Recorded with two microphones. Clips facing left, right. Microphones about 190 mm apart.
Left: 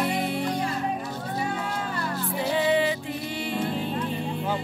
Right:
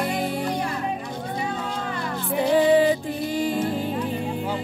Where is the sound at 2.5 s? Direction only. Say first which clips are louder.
Right 6 dB; 40° right (ahead or behind).